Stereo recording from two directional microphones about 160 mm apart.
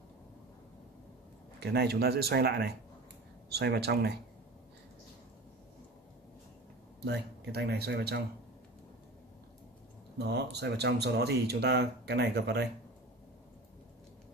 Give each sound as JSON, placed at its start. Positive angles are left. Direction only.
{"t": 1.6, "sound": "speech", "side_deg": -90}
{"t": 7.1, "sound": "speech", "side_deg": -90}
{"t": 10.1, "sound": "speech", "side_deg": -90}